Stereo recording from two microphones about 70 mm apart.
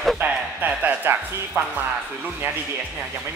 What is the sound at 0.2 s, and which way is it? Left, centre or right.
Music, right.